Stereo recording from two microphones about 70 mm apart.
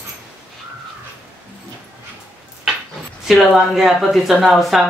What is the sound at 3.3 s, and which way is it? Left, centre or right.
A man's voice, centre.